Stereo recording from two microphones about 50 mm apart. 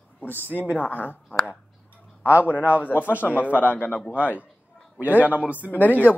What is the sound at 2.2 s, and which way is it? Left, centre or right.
Speech, right.